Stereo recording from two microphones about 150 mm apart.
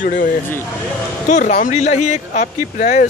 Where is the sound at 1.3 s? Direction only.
60° left (ahead or behind).